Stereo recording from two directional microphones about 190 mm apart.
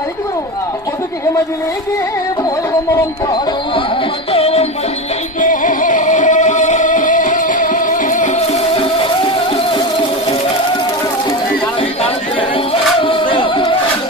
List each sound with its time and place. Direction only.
4.3 s music: 30° left (ahead or behind)
5.4 s music: 45° left (ahead or behind)
13.0 s music: 25° left (ahead or behind)